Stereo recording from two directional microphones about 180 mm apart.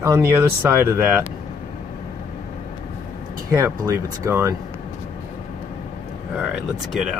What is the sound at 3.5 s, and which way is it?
Speech, 15° right (ahead or behind).